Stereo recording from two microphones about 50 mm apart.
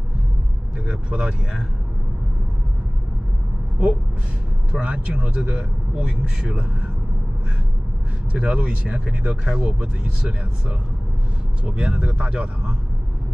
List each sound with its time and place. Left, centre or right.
0.8 s speech: right
4.7 s speech: right
8.3 s speech: right